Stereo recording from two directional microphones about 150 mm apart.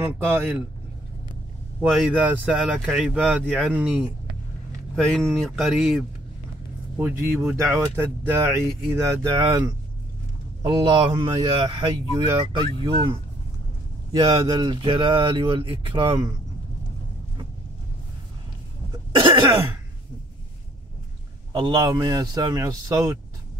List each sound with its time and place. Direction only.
0.0 s speech: 15° right (ahead or behind)
1.8 s speech: 5° right (ahead or behind)
4.9 s speech: 5° left (ahead or behind)
7.0 s a man's voice: 15° right (ahead or behind); by 13.2 s 35° right (ahead or behind)
14.2 s speech: 35° right (ahead or behind)
18.9 s cough: 30° right (ahead or behind)
19.5 s speech: 15° right (ahead or behind)
21.5 s a man's voice: 30° right (ahead or behind)